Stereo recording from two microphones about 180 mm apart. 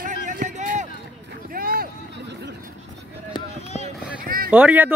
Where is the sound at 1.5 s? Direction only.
55° right (ahead or behind); by 2.5 s 70° right (ahead or behind).